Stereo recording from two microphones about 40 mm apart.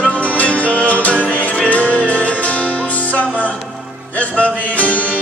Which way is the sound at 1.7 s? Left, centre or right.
Left.